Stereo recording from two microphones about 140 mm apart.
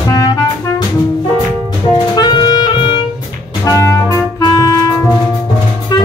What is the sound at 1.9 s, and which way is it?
Music, 30° left (ahead or behind).